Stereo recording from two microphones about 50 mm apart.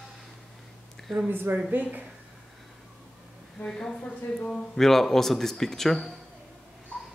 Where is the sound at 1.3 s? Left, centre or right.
Right.